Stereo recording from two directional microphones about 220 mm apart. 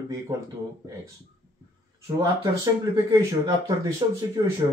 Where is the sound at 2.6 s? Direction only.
15° right (ahead or behind).